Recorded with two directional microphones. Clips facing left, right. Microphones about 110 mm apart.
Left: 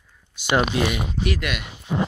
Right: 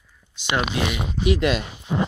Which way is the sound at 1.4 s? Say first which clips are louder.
Right 7 dB; 30° right (ahead or behind).